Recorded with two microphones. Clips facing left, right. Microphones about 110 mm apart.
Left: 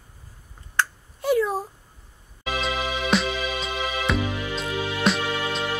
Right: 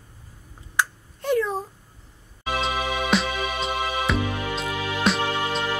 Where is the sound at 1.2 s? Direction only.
5° left (ahead or behind).